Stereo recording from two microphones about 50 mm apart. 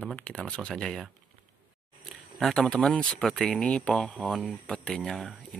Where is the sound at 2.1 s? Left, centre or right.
Centre.